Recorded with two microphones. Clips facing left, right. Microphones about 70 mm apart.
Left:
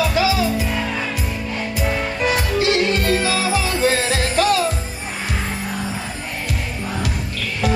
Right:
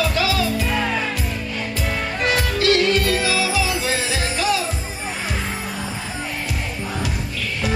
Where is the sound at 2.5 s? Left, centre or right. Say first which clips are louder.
Right 2 dB; left.